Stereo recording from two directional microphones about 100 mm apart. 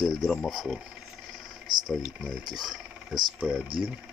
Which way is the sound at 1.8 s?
Centre (ahead or behind).